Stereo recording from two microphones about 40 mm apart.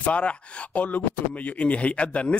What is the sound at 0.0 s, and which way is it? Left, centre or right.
Speech, left.